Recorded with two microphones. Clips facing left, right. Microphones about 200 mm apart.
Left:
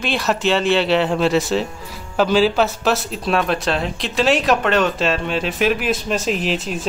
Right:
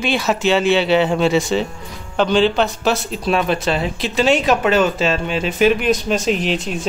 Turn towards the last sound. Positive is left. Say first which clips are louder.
# right 1 dB
turn(degrees=0)  # may be behind; listen again after turning